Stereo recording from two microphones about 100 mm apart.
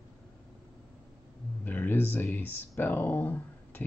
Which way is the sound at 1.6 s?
20° left (ahead or behind).